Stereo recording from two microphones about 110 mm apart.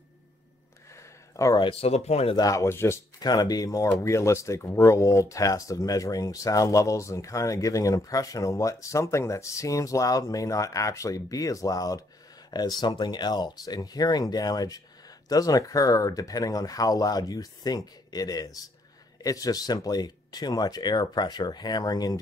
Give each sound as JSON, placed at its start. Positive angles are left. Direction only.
{"t": 1.3, "sound": "speech", "side_deg": 30}
{"t": 1.6, "sound": "speech", "side_deg": 60}
{"t": 2.3, "sound": "speech", "side_deg": 30}
{"t": 3.2, "sound": "speech", "side_deg": 35}
{"t": 12.4, "sound": "a sound", "side_deg": 40}
{"t": 12.8, "sound": "speech", "side_deg": 40}